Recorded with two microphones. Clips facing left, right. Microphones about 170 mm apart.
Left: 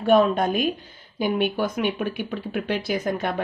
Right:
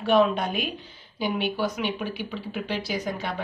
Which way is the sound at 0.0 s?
45° left (ahead or behind).